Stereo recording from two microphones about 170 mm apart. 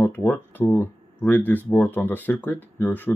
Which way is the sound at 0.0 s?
10° left (ahead or behind).